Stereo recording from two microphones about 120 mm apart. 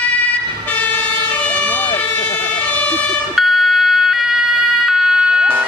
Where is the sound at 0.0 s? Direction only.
10° left (ahead or behind).